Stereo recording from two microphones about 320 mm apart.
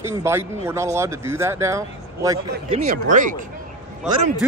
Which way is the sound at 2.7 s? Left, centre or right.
Right.